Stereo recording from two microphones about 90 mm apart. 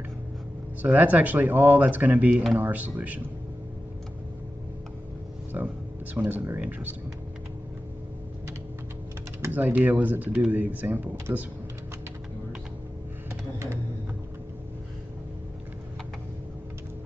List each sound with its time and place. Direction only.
0.8 s speech: 15° right (ahead or behind)
2.3 s speech: centre (ahead or behind)
2.6 s speech: 20° right (ahead or behind)
5.5 s speech: 15° right (ahead or behind)
9.4 s speech: 20° right (ahead or behind)